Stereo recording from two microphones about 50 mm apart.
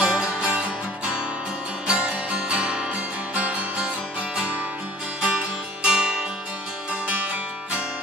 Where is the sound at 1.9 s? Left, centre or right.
Right.